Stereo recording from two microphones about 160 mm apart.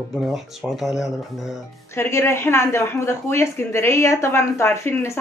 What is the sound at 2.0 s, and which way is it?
Speech, 15° left (ahead or behind).